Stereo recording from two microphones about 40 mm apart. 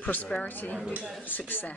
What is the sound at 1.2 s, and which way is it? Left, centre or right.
Speech, left.